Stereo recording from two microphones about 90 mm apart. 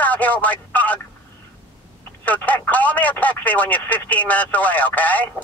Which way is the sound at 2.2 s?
15° left (ahead or behind).